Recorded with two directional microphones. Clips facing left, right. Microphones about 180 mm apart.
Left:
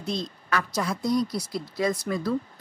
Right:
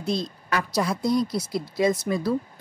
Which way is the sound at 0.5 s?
35° right (ahead or behind).